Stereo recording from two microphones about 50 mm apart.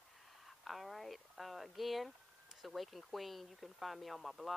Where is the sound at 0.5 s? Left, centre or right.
Centre.